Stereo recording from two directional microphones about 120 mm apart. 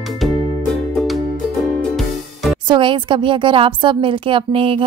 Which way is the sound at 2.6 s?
40° right (ahead or behind).